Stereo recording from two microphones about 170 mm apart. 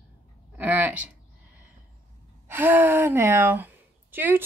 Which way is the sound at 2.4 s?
10° right (ahead or behind).